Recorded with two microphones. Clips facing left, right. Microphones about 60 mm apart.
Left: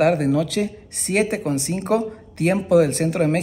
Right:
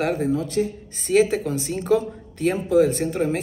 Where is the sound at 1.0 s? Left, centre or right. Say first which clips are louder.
Right 2 dB; left.